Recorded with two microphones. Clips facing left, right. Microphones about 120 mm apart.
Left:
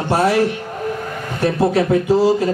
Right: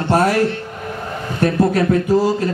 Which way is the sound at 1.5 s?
45° right (ahead or behind).